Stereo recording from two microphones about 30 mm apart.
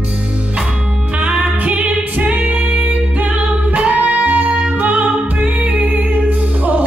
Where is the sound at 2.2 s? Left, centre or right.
Right.